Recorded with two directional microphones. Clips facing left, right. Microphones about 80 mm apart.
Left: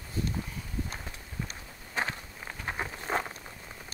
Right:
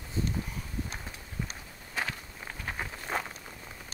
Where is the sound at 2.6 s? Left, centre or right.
Centre.